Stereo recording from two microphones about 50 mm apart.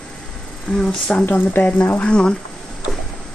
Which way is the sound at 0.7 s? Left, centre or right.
Centre.